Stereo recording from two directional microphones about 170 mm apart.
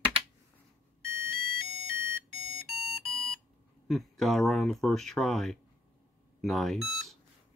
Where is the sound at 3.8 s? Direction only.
Centre (ahead or behind).